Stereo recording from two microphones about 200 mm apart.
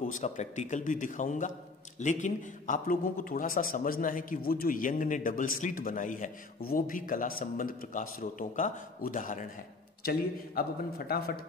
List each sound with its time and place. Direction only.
0.1 s a man's voice: 35° left (ahead or behind)